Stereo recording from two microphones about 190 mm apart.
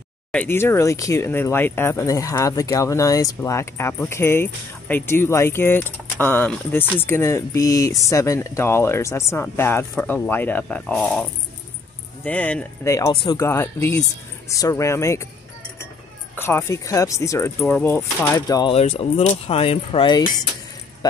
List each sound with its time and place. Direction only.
0.3 s speech: 10° left (ahead or behind)
12.3 s speech: 5° left (ahead or behind)
16.3 s speech: 15° left (ahead or behind)
18.6 s speech: 30° left (ahead or behind)